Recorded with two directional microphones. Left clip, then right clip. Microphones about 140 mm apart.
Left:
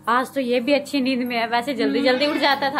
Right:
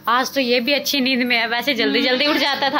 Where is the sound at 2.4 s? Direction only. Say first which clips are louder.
Even; 20° right (ahead or behind).